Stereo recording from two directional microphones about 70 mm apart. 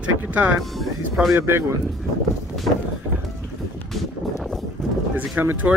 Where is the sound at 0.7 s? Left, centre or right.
Centre.